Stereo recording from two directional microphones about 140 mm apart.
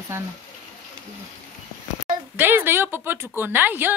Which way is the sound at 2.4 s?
15° right (ahead or behind).